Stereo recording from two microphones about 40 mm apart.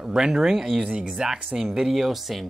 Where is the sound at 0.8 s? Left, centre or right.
Right.